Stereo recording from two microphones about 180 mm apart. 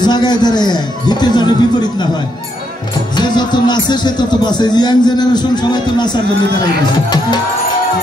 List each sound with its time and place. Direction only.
0.0 s speech: 25° left (ahead or behind)
3.2 s speech: 25° left (ahead or behind)